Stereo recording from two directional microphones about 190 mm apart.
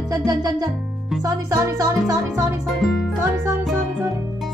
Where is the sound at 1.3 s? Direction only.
15° right (ahead or behind).